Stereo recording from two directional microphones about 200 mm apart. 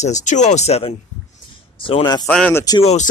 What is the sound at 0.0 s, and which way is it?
Speech, 35° left (ahead or behind).